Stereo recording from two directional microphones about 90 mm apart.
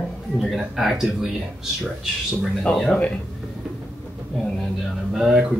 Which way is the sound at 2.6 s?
5° left (ahead or behind).